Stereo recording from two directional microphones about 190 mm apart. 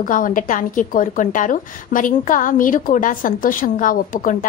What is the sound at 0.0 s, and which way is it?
A woman's voice, 45° left (ahead or behind).